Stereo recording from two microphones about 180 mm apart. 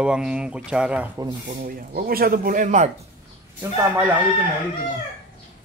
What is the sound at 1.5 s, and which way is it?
Speech, 50° right (ahead or behind).